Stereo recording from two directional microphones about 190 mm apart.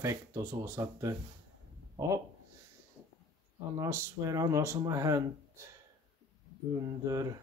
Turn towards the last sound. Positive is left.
turn(degrees=-20)  # may be behind; listen again after turning